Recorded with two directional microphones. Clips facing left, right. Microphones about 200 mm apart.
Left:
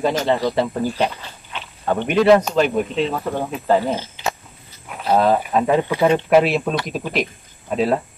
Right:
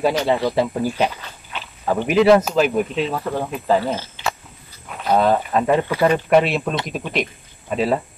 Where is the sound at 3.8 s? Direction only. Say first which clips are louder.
Left 1 dB; 15° left (ahead or behind).